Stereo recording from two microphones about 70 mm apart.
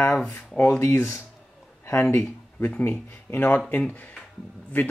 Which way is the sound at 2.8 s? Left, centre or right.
Left.